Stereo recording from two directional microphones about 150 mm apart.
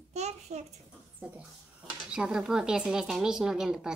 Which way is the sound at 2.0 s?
5° right (ahead or behind).